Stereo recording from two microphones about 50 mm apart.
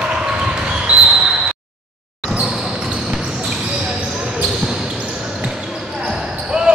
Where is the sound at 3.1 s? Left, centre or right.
Centre.